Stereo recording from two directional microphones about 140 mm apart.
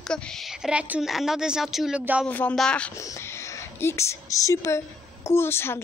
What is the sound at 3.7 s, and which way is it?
A woman's voice, 20° left (ahead or behind).